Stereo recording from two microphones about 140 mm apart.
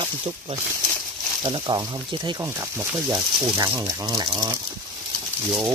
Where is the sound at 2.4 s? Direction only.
20° right (ahead or behind).